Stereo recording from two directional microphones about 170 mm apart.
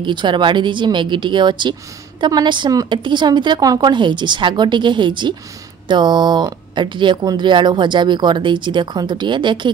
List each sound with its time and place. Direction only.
0.0 s a woman's voice: 25° right (ahead or behind)